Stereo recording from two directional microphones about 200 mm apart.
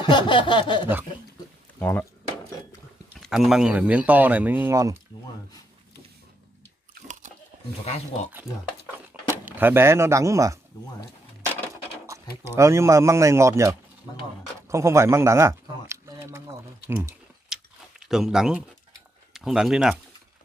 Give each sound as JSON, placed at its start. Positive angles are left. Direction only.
{"t": 0.0, "sound": "a sound", "side_deg": 25}
{"t": 1.8, "sound": "speech", "side_deg": 10}
{"t": 3.2, "sound": "speech", "side_deg": 0}
{"t": 7.8, "sound": "speech", "side_deg": 30}
{"t": 9.3, "sound": "speech", "side_deg": -10}
{"t": 12.4, "sound": "speech", "side_deg": -15}
{"t": 17.5, "sound": "a sound", "side_deg": 0}
{"t": 19.3, "sound": "speech", "side_deg": 0}